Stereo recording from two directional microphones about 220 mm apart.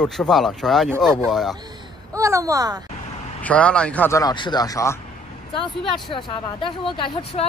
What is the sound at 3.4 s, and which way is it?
Speech, 5° left (ahead or behind).